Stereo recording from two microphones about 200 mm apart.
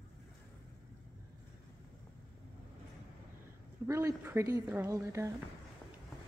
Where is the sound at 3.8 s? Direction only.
15° right (ahead or behind).